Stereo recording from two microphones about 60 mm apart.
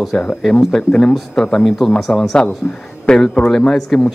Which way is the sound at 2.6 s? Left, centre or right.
Centre.